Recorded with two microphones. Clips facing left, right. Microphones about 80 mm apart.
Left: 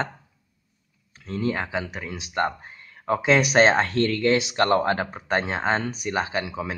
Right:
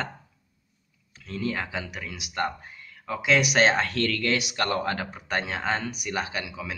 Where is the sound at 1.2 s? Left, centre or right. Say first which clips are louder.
Left 4 dB; left.